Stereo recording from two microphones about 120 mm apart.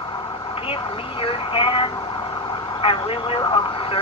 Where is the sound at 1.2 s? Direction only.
50° left (ahead or behind).